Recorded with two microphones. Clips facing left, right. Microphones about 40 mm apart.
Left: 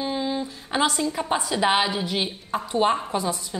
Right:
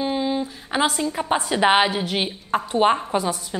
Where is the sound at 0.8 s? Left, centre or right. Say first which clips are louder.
Right 2 dB; right.